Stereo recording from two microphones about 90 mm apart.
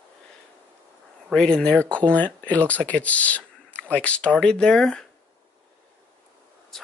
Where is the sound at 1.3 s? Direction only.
10° left (ahead or behind).